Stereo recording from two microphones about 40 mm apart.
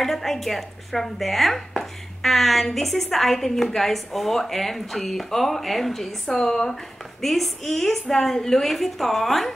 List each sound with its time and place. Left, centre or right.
0.0 s chopping: centre
3.6 s speech: centre